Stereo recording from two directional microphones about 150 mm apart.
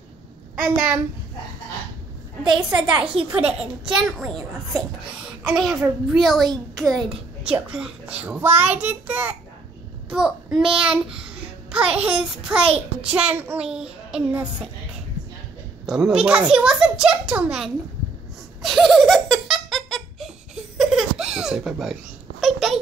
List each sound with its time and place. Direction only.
0.7 s a child's voice: 10° right (ahead or behind)
2.5 s a child's voice: 5° right (ahead or behind)
12.6 s a child's voice: 40° right (ahead or behind)
13.1 s a child's voice: 10° right (ahead or behind)
15.8 s a child's voice: centre (ahead or behind)
18.6 s laughter: centre (ahead or behind)
20.7 s baby laughter: centre (ahead or behind)
22.4 s a sound: centre (ahead or behind)